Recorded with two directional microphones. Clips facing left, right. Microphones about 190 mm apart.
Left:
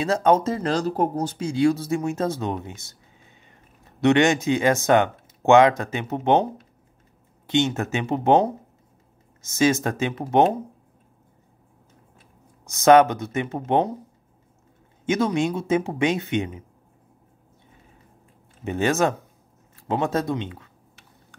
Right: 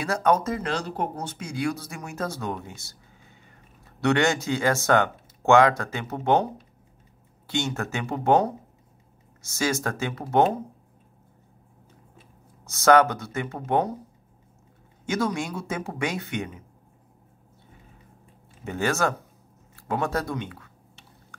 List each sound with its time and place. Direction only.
0.0 s speech: 25° left (ahead or behind)
7.4 s speech: 20° left (ahead or behind)
12.6 s speech: 20° left (ahead or behind)
15.0 s speech: 20° left (ahead or behind)
18.6 s speech: 20° left (ahead or behind)